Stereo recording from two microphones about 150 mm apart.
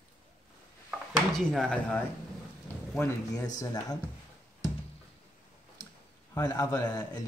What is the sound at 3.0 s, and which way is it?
Speech, 25° left (ahead or behind).